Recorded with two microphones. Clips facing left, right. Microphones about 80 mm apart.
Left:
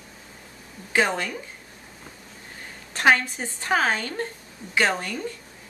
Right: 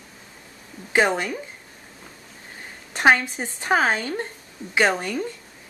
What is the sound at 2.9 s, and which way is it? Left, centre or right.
A woman's voice, right.